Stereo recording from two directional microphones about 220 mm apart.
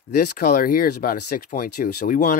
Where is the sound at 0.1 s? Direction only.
40° left (ahead or behind).